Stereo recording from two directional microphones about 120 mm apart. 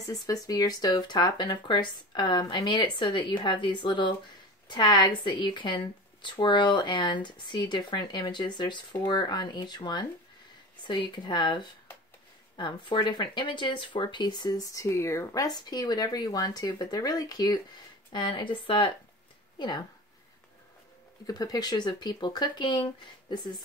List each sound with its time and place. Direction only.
0.0 s speech: 30° left (ahead or behind)
21.3 s speech: 35° left (ahead or behind)